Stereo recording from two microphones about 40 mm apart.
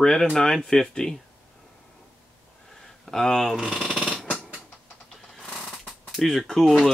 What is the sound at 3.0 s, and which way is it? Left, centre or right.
Speech, centre.